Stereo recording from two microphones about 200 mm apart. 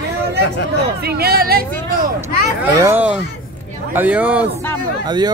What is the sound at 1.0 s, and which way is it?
Speech, 50° right (ahead or behind).